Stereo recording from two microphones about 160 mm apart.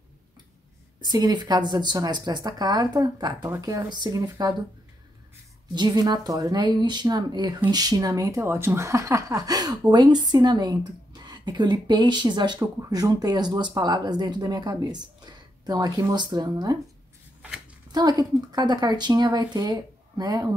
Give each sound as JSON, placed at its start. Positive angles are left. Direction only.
{"t": 1.1, "sound": "speech", "side_deg": -25}
{"t": 5.8, "sound": "speech", "side_deg": -25}
{"t": 17.9, "sound": "speech", "side_deg": -25}